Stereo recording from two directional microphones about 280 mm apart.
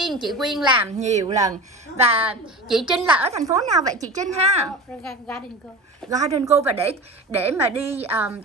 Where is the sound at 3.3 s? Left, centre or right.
Right.